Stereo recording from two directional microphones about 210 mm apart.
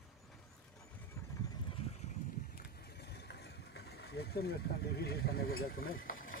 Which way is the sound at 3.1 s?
50° left (ahead or behind).